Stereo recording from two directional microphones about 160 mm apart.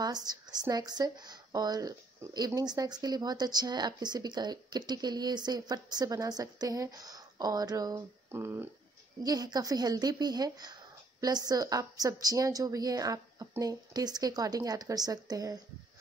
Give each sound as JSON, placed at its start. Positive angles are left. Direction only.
{"t": 0.0, "sound": "speech", "side_deg": -25}